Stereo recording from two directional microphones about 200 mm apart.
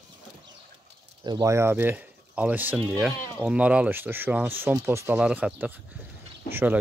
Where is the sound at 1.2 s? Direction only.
20° right (ahead or behind).